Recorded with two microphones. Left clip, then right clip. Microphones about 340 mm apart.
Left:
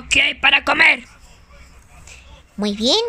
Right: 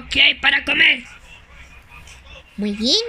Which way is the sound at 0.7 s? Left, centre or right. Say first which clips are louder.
Even; left.